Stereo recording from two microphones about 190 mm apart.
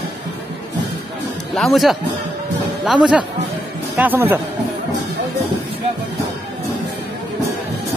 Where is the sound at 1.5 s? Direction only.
Centre (ahead or behind).